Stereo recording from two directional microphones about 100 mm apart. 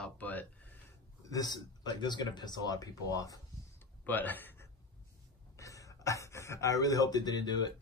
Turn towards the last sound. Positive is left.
turn(degrees=45)  # may be behind; listen again after turning